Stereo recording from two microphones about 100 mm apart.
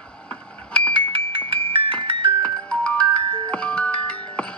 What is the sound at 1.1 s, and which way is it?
Music, 60° right (ahead or behind).